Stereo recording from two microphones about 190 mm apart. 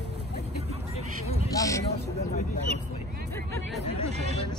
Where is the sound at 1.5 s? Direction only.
15° left (ahead or behind).